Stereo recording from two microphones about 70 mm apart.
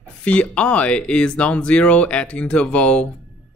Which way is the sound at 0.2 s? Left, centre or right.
Centre.